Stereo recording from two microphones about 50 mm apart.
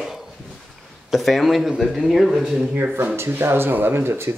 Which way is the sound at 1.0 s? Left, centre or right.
Centre.